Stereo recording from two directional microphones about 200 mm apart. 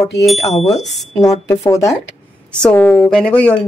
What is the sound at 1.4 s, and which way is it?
Speech, 15° left (ahead or behind).